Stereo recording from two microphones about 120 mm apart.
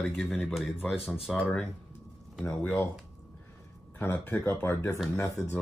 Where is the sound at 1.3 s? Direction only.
Centre (ahead or behind).